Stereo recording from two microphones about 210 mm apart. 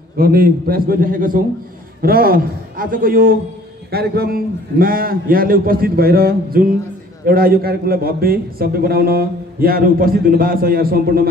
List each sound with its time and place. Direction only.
0.2 s a man's voice: 45° right (ahead or behind)